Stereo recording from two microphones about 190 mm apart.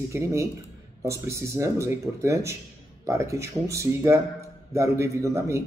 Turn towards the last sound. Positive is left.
turn(degrees=-15)  # may be behind; listen again after turning